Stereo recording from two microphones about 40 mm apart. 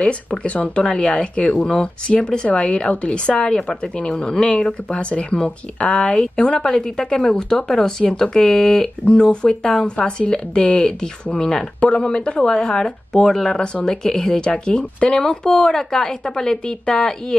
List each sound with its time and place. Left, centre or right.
0.0 s speech: left
14.5 s speech: left